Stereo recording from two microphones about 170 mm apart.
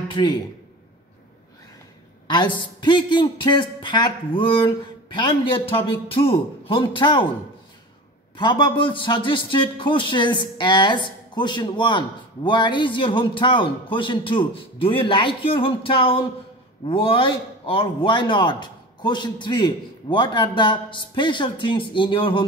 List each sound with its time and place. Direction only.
0.1 s a man's voice: 25° left (ahead or behind)
2.2 s a woman's voice: 25° left (ahead or behind)
8.4 s a man's voice: 25° left (ahead or behind)